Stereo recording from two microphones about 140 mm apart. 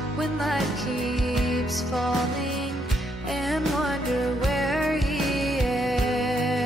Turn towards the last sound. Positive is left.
turn(degrees=0)  # may be behind; listen again after turning